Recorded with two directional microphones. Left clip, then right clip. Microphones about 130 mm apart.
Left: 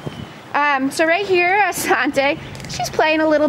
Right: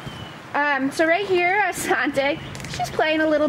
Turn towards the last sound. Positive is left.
turn(degrees=45)  # may be behind; listen again after turning